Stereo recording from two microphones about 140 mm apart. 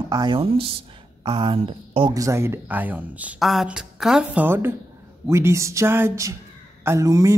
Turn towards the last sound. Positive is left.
turn(degrees=-25)  # may be behind; listen again after turning